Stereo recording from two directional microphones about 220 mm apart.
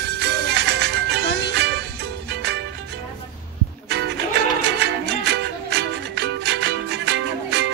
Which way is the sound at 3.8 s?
50° right (ahead or behind).